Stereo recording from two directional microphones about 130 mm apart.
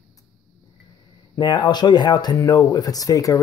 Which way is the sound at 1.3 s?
35° left (ahead or behind).